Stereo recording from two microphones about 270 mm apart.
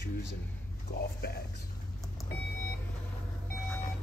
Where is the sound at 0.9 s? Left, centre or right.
Left.